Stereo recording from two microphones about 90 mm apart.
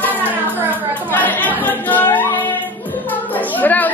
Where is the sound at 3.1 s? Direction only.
20° left (ahead or behind).